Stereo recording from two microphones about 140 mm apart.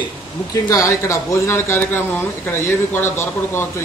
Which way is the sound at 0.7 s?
25° left (ahead or behind).